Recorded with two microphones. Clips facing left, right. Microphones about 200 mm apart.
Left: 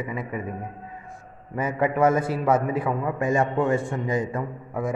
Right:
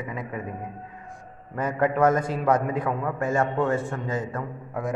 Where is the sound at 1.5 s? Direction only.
10° left (ahead or behind).